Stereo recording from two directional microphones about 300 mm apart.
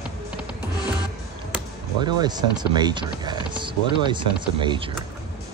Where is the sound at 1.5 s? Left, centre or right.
Centre.